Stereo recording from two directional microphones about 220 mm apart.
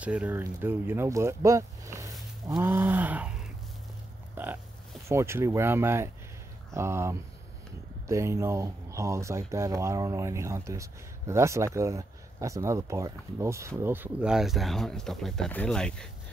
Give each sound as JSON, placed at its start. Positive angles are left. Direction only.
{"t": 0.0, "sound": "speech", "side_deg": -5}
{"t": 2.4, "sound": "a sound", "side_deg": -15}
{"t": 5.0, "sound": "speech", "side_deg": -10}